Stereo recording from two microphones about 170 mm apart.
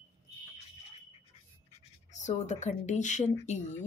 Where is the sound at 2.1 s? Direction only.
45° left (ahead or behind).